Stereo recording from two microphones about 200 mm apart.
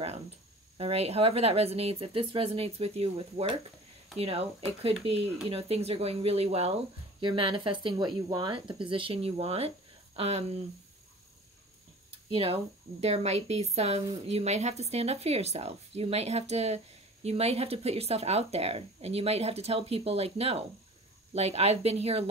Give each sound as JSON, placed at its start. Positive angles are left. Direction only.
{"t": 0.7, "sound": "speech", "side_deg": -30}
{"t": 12.3, "sound": "speech", "side_deg": -30}